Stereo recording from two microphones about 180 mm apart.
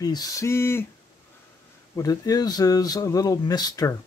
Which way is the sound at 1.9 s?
20° left (ahead or behind).